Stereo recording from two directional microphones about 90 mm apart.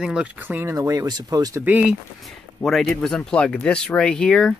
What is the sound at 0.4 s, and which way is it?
Speech, 20° right (ahead or behind).